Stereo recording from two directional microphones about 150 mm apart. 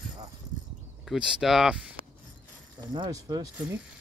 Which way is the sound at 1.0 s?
5° right (ahead or behind).